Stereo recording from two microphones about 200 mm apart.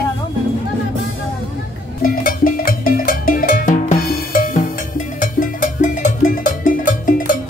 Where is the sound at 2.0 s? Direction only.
45° left (ahead or behind).